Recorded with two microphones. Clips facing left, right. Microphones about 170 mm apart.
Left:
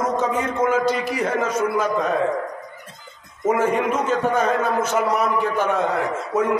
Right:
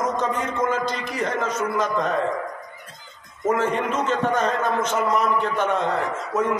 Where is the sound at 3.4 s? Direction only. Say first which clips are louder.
Left 3 dB; 10° left (ahead or behind).